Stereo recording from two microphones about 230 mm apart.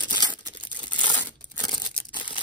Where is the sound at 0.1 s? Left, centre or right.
Centre.